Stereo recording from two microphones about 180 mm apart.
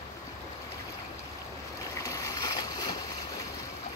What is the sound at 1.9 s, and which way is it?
Boat, 20° left (ahead or behind).